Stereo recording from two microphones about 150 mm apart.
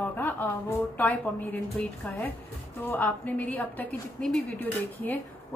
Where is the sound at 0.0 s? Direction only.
10° left (ahead or behind).